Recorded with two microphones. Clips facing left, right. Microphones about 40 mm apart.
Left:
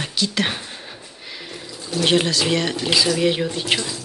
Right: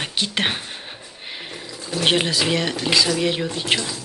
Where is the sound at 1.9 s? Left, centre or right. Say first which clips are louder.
Left 1 dB; centre.